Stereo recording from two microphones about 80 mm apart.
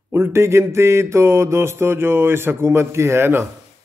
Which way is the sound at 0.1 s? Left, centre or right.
Right.